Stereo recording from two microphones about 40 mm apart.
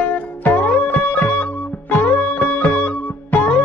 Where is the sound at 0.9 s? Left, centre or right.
Left.